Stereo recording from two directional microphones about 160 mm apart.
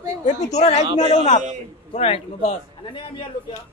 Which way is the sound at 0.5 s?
45° left (ahead or behind).